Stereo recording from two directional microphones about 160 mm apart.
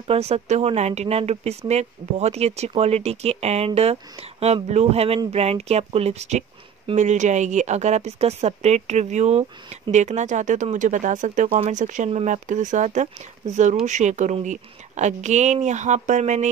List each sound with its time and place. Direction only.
0.0 s speech: 40° right (ahead or behind)